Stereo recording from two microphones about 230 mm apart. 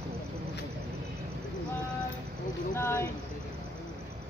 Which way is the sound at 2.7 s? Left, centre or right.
Centre.